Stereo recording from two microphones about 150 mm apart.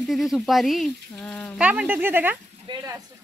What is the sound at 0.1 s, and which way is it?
Speech, centre (ahead or behind).